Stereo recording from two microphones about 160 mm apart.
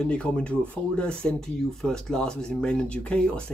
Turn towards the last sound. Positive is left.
turn(degrees=5)  # may be behind; listen again after turning